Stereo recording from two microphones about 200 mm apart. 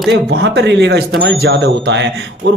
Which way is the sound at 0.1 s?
60° right (ahead or behind).